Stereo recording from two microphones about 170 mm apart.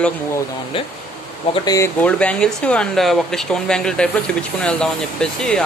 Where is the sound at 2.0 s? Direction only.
5° left (ahead or behind).